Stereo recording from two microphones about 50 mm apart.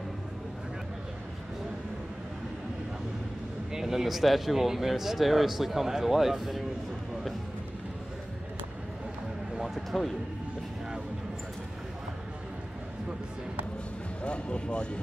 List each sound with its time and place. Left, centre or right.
3.7 s speech: centre
9.6 s a sound: centre
14.2 s speech: left